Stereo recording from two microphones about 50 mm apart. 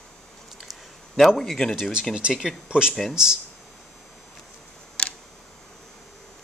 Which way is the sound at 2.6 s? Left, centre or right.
Centre.